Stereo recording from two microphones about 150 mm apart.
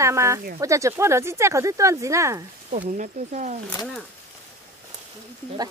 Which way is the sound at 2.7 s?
55° right (ahead or behind).